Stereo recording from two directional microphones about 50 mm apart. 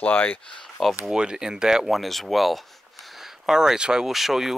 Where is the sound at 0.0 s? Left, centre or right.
Left.